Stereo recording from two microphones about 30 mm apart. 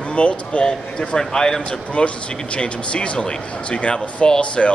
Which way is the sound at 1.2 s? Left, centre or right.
Left.